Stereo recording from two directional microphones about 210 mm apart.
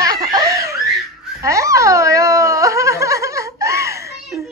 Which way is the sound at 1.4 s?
15° right (ahead or behind).